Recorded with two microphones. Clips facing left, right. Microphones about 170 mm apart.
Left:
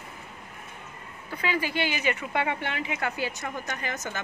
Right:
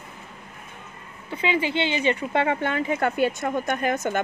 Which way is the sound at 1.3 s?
25° right (ahead or behind).